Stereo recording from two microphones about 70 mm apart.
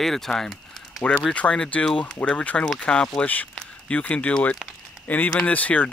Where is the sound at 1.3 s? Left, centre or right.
Centre.